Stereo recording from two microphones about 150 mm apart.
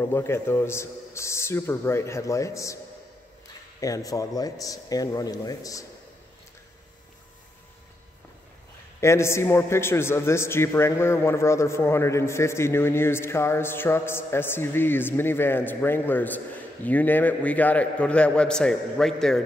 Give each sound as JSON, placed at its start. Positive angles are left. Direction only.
{"t": 0.0, "sound": "a man's voice", "side_deg": 15}
{"t": 3.8, "sound": "speech", "side_deg": 25}
{"t": 9.0, "sound": "a man's voice", "side_deg": 20}